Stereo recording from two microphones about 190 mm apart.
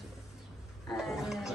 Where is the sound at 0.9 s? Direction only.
Centre (ahead or behind).